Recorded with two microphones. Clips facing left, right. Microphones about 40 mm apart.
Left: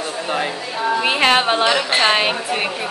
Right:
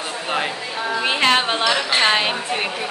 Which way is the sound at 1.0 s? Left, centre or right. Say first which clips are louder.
Left 1 dB; centre.